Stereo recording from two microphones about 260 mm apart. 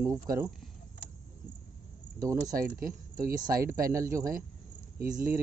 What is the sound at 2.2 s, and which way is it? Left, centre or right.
Speech, centre.